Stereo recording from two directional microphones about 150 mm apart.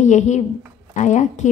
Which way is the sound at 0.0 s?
50° left (ahead or behind).